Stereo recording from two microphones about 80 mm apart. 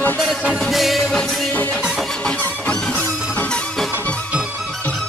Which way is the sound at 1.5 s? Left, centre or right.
Left.